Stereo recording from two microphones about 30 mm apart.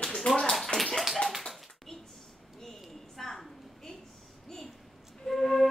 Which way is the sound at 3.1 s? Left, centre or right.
Centre.